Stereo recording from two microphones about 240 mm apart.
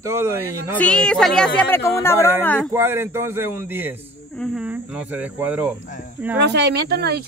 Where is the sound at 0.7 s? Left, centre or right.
Centre.